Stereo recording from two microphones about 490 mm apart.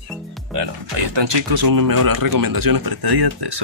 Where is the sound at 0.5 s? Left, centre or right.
Right.